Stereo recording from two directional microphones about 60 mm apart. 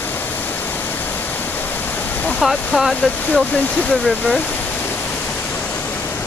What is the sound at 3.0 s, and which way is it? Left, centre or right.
Speech, left.